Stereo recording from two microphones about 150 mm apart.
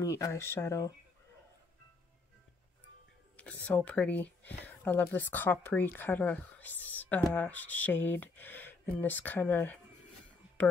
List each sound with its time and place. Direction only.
0.0 s speech: 20° left (ahead or behind)
3.3 s speech: 10° left (ahead or behind)